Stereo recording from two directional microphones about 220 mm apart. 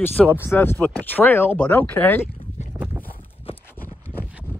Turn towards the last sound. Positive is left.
turn(degrees=-5)  # may be behind; listen again after turning